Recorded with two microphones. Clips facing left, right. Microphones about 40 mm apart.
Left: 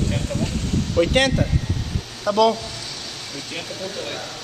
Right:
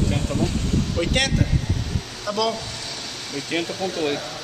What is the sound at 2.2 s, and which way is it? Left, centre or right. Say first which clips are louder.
Speech: left 7 dB; left.